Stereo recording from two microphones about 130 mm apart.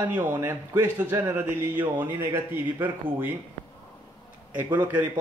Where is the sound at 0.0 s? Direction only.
15° right (ahead or behind).